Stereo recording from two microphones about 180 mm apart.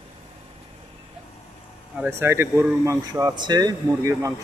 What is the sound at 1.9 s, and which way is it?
Speech, 10° right (ahead or behind).